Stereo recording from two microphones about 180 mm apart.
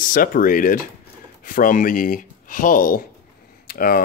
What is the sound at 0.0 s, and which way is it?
Speech, 50° left (ahead or behind).